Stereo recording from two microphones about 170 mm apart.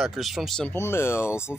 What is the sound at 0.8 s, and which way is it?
Speech, 15° left (ahead or behind).